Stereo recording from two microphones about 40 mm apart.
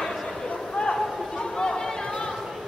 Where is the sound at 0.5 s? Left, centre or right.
Left.